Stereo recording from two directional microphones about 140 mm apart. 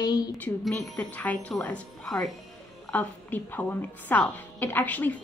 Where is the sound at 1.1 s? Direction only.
10° left (ahead or behind).